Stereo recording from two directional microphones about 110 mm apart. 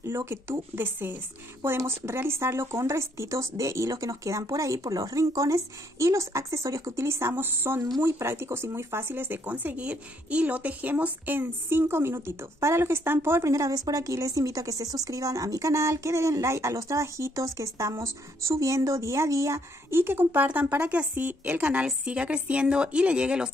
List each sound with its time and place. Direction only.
0.0 s speech: 25° right (ahead or behind); by 23.5 s 10° right (ahead or behind)